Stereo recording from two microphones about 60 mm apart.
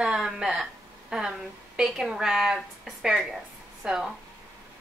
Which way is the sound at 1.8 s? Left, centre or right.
Centre.